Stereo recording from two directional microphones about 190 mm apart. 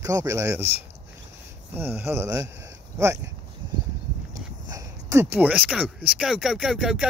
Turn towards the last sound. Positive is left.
turn(degrees=-5)  # may be behind; listen again after turning